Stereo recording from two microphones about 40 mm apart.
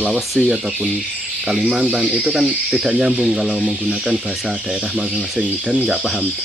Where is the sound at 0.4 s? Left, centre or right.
Right.